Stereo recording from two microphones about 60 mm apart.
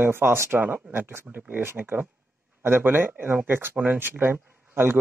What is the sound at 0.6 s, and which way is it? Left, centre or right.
Speech, right.